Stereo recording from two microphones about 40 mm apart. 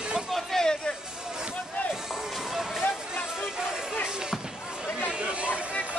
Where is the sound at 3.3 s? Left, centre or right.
Centre.